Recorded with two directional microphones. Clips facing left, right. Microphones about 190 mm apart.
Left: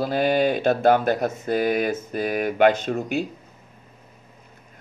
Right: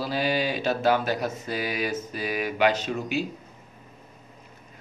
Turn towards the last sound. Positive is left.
turn(degrees=55)  # may be behind; listen again after turning